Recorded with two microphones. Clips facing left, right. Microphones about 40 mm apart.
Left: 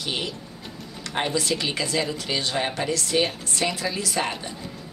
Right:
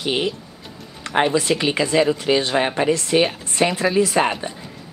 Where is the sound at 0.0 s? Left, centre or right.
Right.